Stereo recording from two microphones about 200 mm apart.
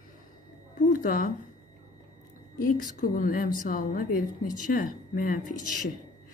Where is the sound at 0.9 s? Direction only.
45° left (ahead or behind).